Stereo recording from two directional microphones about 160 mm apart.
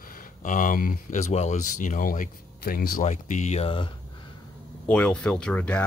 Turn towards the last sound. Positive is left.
turn(degrees=10)  # may be behind; listen again after turning